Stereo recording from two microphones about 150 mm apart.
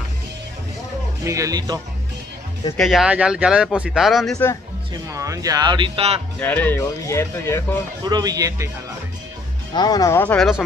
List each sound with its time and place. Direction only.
1.2 s speech: 20° right (ahead or behind)
2.8 s speech: 5° right (ahead or behind)
5.1 s speech: 20° right (ahead or behind); by 6.2 s 40° right (ahead or behind)
6.4 s speech: 10° left (ahead or behind)
8.0 s speech: 25° right (ahead or behind)
9.8 s speech: 25° left (ahead or behind)
10.2 s speech: 10° left (ahead or behind)